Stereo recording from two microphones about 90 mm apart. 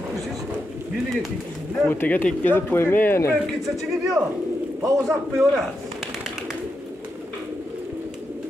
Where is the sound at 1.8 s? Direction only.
20° left (ahead or behind).